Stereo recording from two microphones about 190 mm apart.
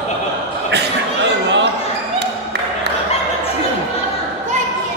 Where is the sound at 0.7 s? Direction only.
70° right (ahead or behind).